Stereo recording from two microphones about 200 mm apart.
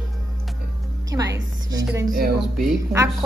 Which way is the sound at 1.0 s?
15° right (ahead or behind).